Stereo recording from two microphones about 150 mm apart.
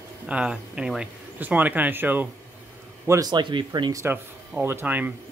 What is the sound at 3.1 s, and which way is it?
Speech, 25° right (ahead or behind).